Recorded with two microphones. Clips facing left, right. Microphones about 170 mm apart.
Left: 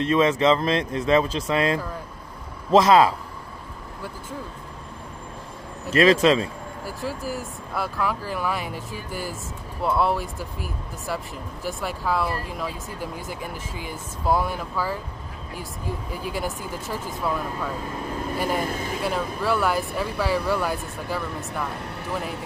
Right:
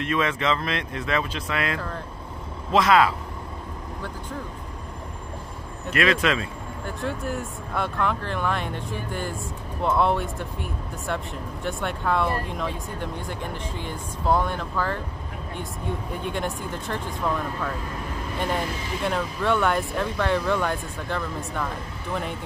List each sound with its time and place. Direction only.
0.0 s speech: 30° left (ahead or behind)
5.9 s speech: 35° left (ahead or behind)
6.8 s speech: 5° left (ahead or behind)
18.6 s speech: 50° left (ahead or behind)
18.9 s speech: 5° left (ahead or behind)